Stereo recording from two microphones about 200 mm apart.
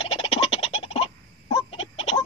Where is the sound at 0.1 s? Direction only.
30° left (ahead or behind).